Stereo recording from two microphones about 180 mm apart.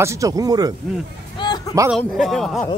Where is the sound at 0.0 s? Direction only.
20° right (ahead or behind).